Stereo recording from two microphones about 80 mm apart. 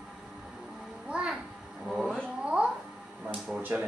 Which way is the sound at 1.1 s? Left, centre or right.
Centre.